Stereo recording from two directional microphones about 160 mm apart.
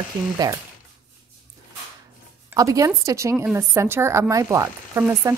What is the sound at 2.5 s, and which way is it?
A woman's voice, 20° right (ahead or behind).